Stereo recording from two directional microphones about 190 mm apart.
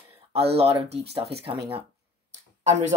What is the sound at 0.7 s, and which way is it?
Speech, 35° right (ahead or behind).